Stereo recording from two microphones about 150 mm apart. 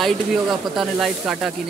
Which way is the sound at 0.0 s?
Centre (ahead or behind).